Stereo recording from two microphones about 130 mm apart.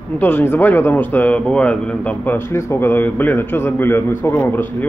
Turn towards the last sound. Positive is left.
turn(degrees=15)  # may be behind; listen again after turning